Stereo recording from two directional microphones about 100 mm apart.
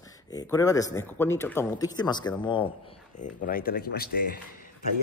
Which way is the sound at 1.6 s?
40° left (ahead or behind).